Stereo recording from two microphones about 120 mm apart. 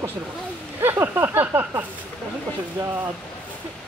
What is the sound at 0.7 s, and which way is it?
Speech, 20° right (ahead or behind).